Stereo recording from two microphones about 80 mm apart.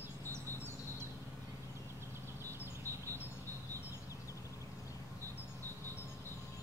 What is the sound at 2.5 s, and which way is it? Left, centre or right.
Bird, right.